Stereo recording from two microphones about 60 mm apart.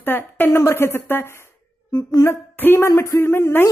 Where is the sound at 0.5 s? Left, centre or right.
Left.